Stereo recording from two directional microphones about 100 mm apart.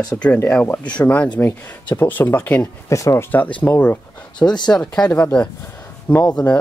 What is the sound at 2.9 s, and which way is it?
Speech, 30° left (ahead or behind).